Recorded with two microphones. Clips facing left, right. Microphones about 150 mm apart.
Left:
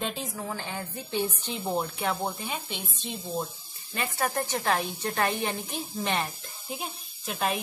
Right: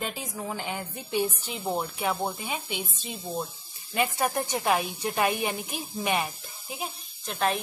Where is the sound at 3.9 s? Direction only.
15° right (ahead or behind).